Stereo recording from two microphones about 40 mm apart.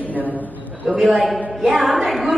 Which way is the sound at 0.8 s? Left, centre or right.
Centre.